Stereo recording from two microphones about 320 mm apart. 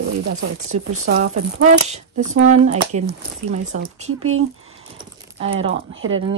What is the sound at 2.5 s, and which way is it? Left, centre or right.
Speech, right.